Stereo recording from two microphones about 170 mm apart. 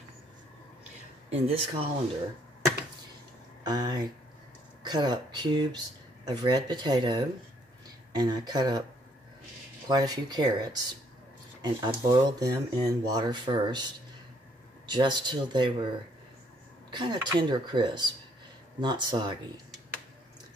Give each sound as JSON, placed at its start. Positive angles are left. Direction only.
{"t": 1.3, "sound": "speech", "side_deg": -35}
{"t": 3.6, "sound": "speech", "side_deg": -25}
{"t": 9.8, "sound": "speech", "side_deg": -25}
{"t": 14.9, "sound": "speech", "side_deg": -25}
{"t": 16.9, "sound": "speech", "side_deg": -25}